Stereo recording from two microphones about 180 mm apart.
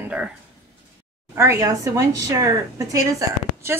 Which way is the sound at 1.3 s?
15° right (ahead or behind).